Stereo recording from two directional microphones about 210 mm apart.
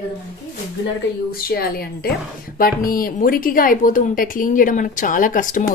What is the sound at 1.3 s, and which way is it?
Speech, 45° left (ahead or behind).